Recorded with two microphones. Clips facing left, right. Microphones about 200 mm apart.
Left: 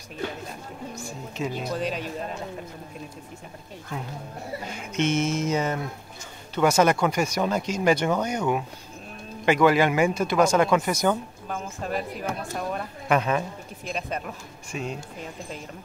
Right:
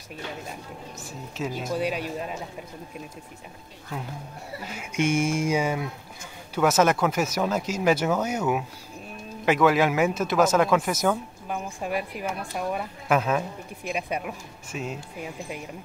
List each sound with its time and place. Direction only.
1.0 s speech: 5° right (ahead or behind)
4.6 s speech: 10° right (ahead or behind)